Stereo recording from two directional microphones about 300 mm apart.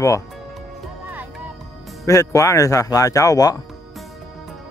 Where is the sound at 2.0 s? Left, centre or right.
Centre.